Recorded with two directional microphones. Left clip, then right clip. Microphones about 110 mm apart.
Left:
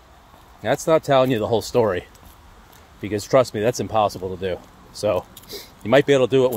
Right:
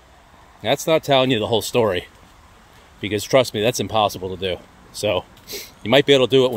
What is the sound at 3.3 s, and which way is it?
Speech, 20° right (ahead or behind).